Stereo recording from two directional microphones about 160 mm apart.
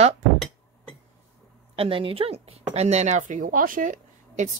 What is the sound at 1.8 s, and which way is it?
Speech, 35° right (ahead or behind).